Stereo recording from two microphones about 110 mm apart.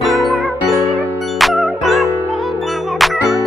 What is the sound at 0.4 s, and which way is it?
Music, centre (ahead or behind).